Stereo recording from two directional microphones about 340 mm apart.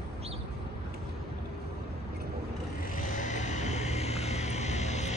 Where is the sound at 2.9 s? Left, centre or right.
Left.